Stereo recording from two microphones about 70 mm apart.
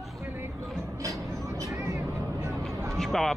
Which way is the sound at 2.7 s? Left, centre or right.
Right.